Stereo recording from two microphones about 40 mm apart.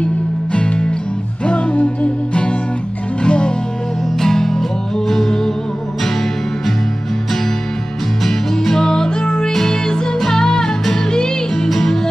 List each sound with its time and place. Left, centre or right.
0.0 s music: left
3.2 s music: left
4.2 s music: centre
8.2 s music: centre